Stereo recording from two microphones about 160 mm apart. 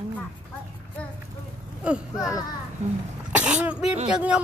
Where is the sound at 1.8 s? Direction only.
5° right (ahead or behind).